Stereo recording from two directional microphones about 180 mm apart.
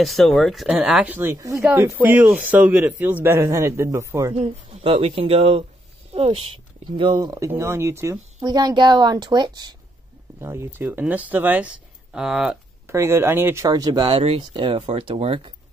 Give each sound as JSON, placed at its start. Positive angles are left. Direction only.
{"t": 0.0, "sound": "speech", "side_deg": 0}
{"t": 4.4, "sound": "speech", "side_deg": -30}
{"t": 12.8, "sound": "speech", "side_deg": -15}